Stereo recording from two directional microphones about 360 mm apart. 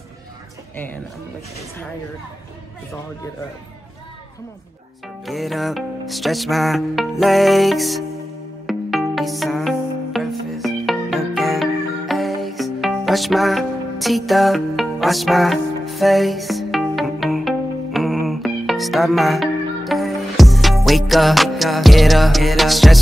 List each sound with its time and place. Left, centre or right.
5.2 s music: centre